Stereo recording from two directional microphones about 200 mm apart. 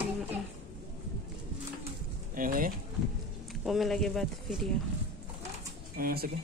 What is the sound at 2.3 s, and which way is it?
Speech, 45° right (ahead or behind).